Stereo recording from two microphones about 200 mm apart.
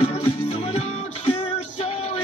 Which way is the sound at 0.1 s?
30° left (ahead or behind).